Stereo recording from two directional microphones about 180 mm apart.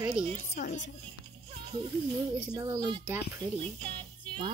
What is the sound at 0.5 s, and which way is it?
Speech, 45° left (ahead or behind).